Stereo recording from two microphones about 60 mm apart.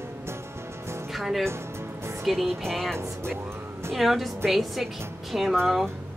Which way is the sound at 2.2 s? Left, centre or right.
Centre.